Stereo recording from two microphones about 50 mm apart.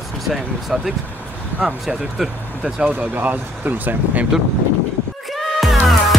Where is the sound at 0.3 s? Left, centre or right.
Centre.